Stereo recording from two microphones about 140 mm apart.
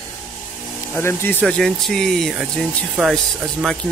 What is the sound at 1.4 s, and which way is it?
Speech, 5° left (ahead or behind).